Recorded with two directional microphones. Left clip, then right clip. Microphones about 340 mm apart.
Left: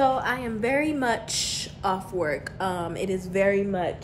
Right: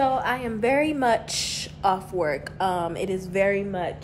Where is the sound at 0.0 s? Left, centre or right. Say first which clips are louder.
Even; centre.